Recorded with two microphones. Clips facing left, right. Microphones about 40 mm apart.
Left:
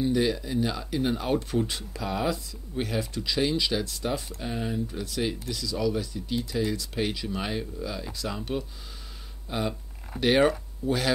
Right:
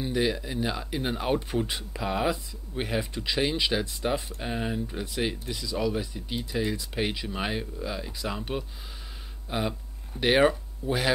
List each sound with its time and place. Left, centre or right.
0.0 s speech: centre